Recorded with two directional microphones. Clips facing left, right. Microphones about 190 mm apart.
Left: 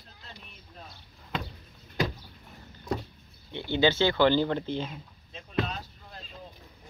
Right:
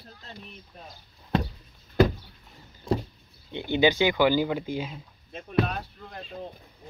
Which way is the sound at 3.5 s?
15° right (ahead or behind).